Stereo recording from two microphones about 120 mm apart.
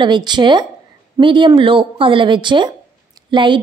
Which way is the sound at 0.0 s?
40° right (ahead or behind).